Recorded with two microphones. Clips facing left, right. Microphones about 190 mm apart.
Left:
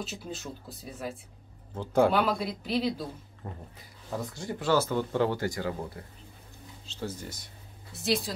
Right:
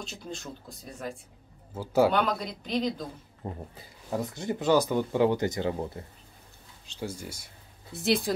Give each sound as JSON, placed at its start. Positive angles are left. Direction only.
{"t": 0.0, "sound": "speech", "side_deg": 5}
{"t": 3.4, "sound": "speech", "side_deg": -25}
{"t": 6.9, "sound": "speech", "side_deg": -10}
{"t": 7.9, "sound": "a woman's voice", "side_deg": -60}